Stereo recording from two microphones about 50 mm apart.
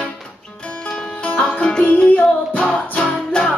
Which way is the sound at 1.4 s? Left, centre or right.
Centre.